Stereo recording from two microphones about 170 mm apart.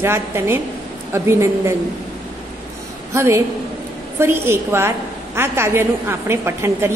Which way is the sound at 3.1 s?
15° right (ahead or behind).